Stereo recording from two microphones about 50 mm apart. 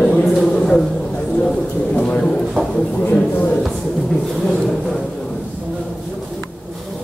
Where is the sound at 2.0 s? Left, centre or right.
Left.